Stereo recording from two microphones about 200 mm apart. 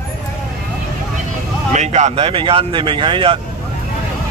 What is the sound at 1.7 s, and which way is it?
Speech, 35° right (ahead or behind).